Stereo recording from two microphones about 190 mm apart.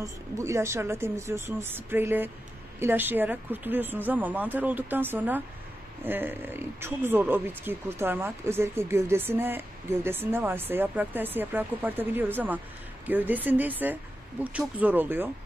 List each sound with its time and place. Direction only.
0.0 s speech: 15° right (ahead or behind)